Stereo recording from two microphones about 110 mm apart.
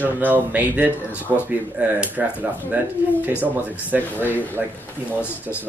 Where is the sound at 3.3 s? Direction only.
15° right (ahead or behind).